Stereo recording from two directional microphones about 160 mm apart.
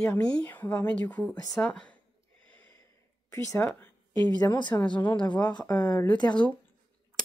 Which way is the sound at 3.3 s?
20° left (ahead or behind).